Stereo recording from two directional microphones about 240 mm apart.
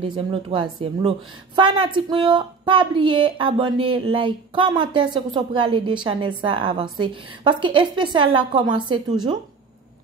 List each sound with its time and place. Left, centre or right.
0.0 s a woman's voice: centre